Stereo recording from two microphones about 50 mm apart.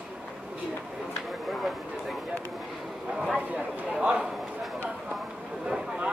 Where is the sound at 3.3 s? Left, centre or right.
Centre.